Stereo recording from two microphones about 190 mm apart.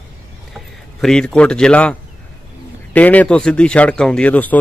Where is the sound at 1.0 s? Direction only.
5° left (ahead or behind).